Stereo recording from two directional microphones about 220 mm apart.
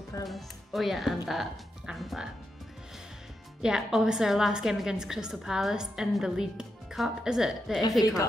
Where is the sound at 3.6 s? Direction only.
Centre (ahead or behind).